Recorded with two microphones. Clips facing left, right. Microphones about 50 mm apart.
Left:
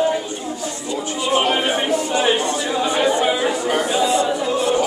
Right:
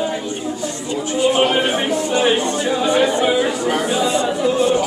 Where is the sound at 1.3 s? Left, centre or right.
Centre.